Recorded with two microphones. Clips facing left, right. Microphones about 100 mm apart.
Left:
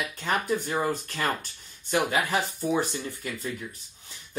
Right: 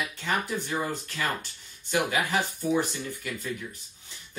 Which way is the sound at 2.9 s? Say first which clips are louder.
Left 1 dB; 35° left (ahead or behind).